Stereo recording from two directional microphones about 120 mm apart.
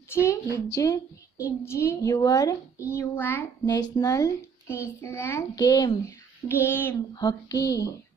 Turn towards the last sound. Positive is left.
turn(degrees=30)  # may be behind; listen again after turning